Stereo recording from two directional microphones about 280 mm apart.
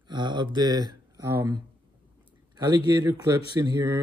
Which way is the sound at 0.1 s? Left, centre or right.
Centre.